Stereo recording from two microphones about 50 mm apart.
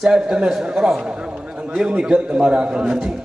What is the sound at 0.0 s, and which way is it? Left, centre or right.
A man's voice, centre.